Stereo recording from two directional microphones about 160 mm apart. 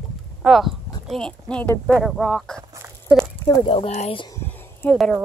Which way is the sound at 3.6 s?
40° left (ahead or behind).